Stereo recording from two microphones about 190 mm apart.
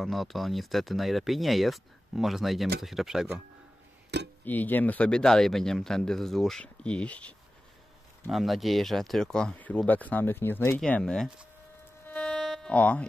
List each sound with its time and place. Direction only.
0.0 s speech: centre (ahead or behind)
4.1 s speech: 65° right (ahead or behind)
4.5 s speech: 10° left (ahead or behind)
12.1 s music: centre (ahead or behind)